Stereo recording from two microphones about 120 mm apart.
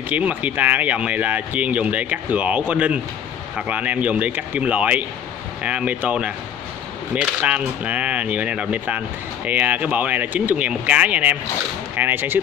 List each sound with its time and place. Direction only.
0.1 s speech: 10° right (ahead or behind)